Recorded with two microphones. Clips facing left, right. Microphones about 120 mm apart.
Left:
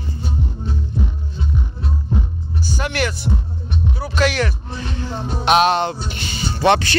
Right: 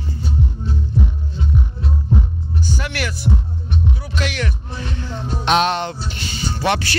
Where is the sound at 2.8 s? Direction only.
25° left (ahead or behind).